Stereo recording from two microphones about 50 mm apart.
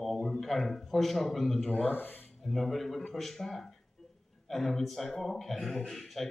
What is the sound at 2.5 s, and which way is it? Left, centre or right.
A man's voice, centre.